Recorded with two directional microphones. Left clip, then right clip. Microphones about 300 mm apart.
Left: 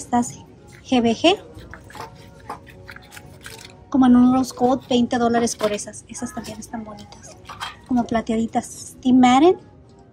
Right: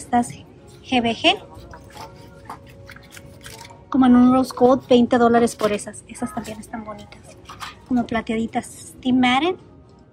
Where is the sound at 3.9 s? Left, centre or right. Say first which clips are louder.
Right 1 dB; centre.